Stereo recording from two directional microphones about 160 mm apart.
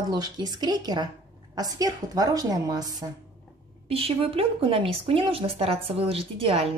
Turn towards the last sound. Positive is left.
turn(degrees=-40)  # may be behind; listen again after turning